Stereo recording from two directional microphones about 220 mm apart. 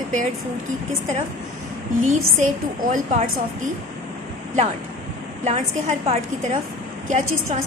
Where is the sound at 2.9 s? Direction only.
40° right (ahead or behind).